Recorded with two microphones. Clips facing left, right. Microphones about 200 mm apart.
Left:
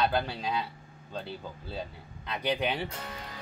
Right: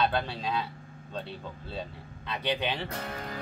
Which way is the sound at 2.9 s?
55° right (ahead or behind).